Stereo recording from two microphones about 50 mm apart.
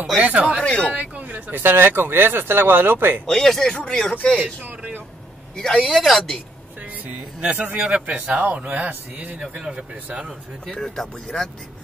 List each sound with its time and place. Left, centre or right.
0.2 s speech: right
0.6 s speech: left
0.9 s speech: right
3.3 s speech: centre
3.7 s speech: left
4.4 s a sound: right
5.6 s speech: centre
5.9 s speech: centre
7.7 s speech: right
9.4 s speech: centre
9.8 s speech: right
10.7 s speech: centre